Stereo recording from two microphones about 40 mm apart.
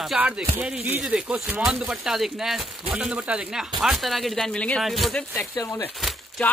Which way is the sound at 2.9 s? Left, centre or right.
Right.